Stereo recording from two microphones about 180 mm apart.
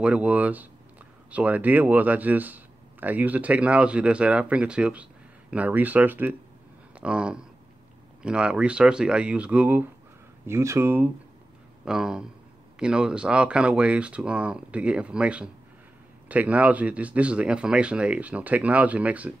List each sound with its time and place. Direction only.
0.0 s speech: 5° right (ahead or behind)